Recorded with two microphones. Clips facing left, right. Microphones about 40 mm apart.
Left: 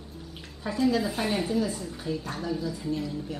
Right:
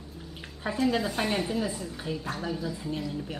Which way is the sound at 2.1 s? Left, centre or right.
Right.